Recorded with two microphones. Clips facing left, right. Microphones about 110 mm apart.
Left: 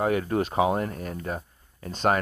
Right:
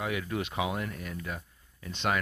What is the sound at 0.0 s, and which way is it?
Speech, 40° left (ahead or behind).